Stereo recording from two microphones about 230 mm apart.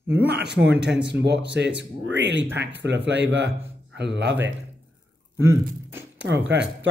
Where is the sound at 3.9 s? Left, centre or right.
Right.